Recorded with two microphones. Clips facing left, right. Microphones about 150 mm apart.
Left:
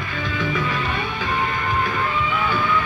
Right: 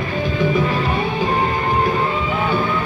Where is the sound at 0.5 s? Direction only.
35° right (ahead or behind).